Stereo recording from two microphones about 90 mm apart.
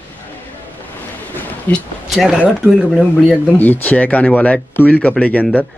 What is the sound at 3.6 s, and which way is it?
Speech, 20° left (ahead or behind).